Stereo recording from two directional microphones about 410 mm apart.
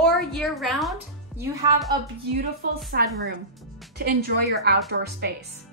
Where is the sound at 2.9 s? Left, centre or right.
Right.